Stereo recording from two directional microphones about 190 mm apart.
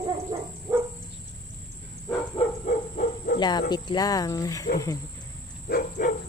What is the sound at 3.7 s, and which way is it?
Speech, 20° left (ahead or behind).